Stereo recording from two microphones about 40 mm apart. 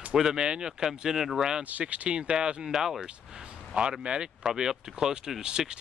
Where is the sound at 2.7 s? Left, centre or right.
Centre.